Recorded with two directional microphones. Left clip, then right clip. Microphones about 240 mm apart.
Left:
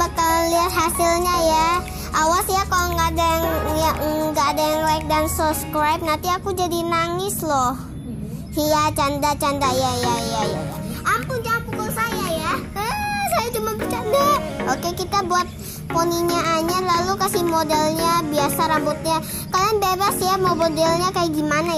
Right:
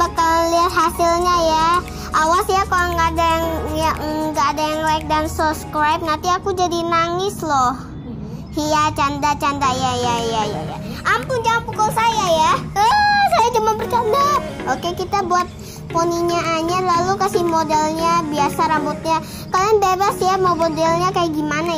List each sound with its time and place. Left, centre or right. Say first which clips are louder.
0.0 s child singing: right 3 dB; left
8.7 s child singing: right 4 dB; left
11.1 s a child's voice: right 4 dB; centre; by 15.4 s left
15.9 s child singing: right 2 dB; left